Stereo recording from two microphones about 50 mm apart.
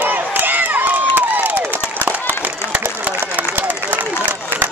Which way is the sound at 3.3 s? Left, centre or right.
Right.